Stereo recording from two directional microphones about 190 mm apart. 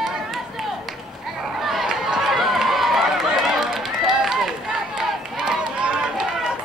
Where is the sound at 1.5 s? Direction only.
Centre (ahead or behind).